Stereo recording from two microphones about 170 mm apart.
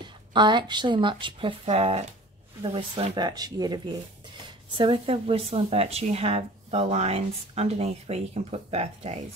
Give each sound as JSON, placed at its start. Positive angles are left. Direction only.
{"t": 0.0, "sound": "a woman's voice", "side_deg": -25}